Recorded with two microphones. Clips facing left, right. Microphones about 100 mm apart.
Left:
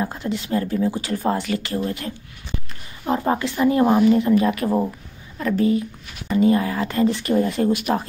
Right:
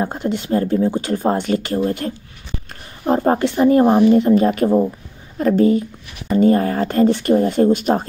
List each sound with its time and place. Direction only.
0.0 s speech: 40° right (ahead or behind)
0.9 s speech: 40° right (ahead or behind)